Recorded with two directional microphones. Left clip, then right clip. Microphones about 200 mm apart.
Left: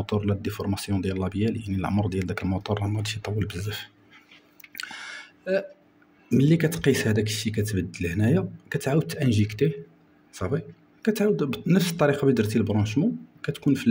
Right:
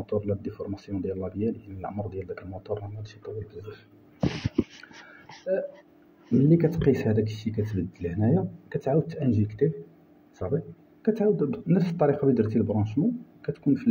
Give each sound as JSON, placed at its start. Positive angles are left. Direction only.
{"t": 0.0, "sound": "speech", "side_deg": 40}
{"t": 6.5, "sound": "speech", "side_deg": 35}